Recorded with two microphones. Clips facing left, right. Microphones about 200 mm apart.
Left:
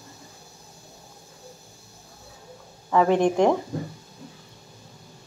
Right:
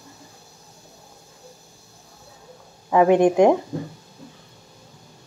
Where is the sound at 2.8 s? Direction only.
15° right (ahead or behind).